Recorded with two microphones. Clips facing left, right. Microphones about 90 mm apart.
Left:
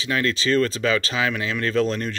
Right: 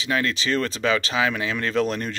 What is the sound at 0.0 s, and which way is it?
Speech, 20° right (ahead or behind).